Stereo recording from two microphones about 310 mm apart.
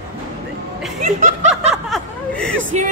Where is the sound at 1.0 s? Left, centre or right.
Right.